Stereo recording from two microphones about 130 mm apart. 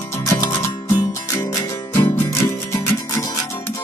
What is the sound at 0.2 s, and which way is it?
Music, 25° left (ahead or behind).